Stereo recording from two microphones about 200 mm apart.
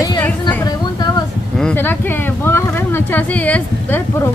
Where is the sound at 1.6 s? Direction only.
10° left (ahead or behind).